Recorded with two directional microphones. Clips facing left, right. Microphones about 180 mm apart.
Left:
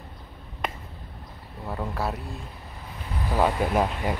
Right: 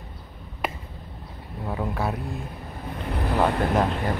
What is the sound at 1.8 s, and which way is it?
Speech, centre (ahead or behind).